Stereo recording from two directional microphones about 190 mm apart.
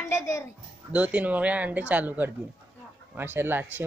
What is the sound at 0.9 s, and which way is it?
Speech, 5° right (ahead or behind).